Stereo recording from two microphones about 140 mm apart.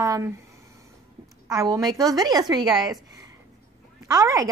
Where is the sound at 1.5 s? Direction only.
25° right (ahead or behind).